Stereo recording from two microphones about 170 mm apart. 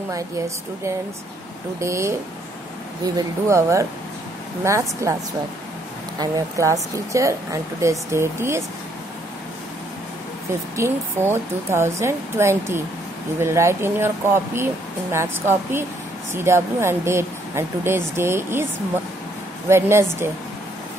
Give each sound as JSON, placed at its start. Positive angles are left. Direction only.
{"t": 1.8, "sound": "speech", "side_deg": -15}
{"t": 3.2, "sound": "speech", "side_deg": -15}
{"t": 6.1, "sound": "speech", "side_deg": -20}
{"t": 10.8, "sound": "speech", "side_deg": -15}
{"t": 19.7, "sound": "speech", "side_deg": -15}